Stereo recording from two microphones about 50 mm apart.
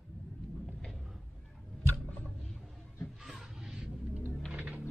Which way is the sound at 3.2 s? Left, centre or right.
Centre.